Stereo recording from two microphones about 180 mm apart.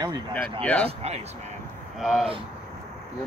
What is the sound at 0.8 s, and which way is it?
Speech, 35° right (ahead or behind).